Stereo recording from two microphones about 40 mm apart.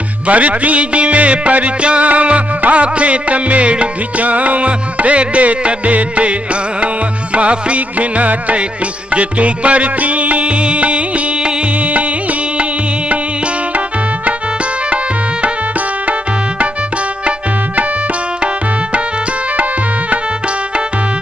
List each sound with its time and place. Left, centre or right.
0.3 s music: right
7.3 s music: right